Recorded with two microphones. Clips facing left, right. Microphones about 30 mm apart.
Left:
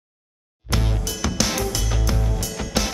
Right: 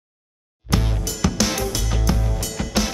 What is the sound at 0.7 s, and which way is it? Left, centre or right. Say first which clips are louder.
Music: right 2 dB; centre.